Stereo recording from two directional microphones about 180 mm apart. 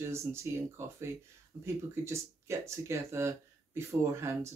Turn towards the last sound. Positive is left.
turn(degrees=-15)  # may be behind; listen again after turning